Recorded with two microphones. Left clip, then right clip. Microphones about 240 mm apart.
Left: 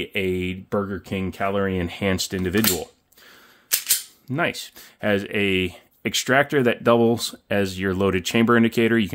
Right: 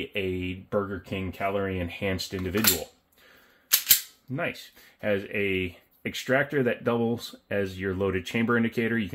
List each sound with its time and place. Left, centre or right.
0.0 s speech: left
3.6 s cap gun: centre
4.3 s speech: left